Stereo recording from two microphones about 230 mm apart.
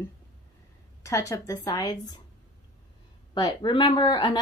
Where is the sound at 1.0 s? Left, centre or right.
Centre.